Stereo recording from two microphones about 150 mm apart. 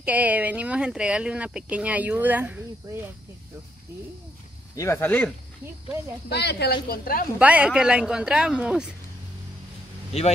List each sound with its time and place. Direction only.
0.0 s speech: 10° right (ahead or behind)
4.7 s speech: 20° left (ahead or behind)
6.2 s a woman's voice: 90° left
7.3 s speech: 10° right (ahead or behind)